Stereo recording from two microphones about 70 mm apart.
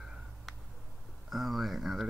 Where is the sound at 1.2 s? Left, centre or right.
Centre.